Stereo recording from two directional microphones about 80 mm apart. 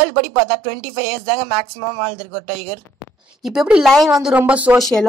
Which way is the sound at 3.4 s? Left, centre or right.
Centre.